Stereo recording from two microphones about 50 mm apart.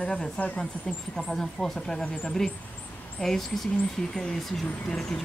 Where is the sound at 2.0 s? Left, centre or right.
Left.